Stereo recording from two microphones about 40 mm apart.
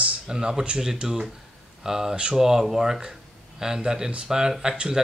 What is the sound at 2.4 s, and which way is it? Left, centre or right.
A man's voice, centre.